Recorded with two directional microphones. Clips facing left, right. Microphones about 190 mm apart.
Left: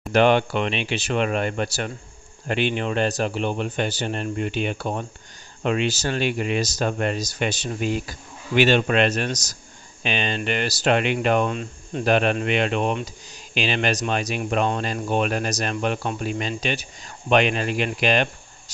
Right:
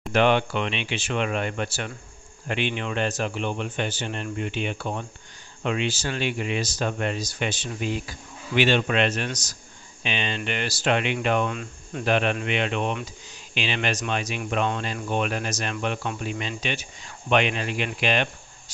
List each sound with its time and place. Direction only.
0.1 s speech: 40° left (ahead or behind)
11.5 s speech: 30° left (ahead or behind)
12.1 s speech: 40° left (ahead or behind)